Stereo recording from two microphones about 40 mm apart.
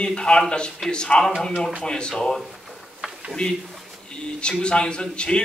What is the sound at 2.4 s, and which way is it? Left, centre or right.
Drawer open or close, centre.